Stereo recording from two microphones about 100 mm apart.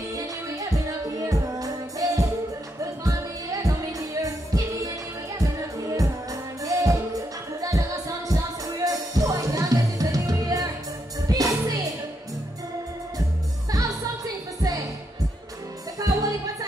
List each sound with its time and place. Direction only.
0.1 s music: 35° right (ahead or behind)
8.3 s music: 35° right (ahead or behind)
13.7 s music: 35° right (ahead or behind)
16.0 s music: 35° right (ahead or behind)